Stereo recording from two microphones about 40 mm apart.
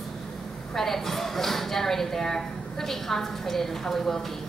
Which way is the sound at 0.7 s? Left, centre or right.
Centre.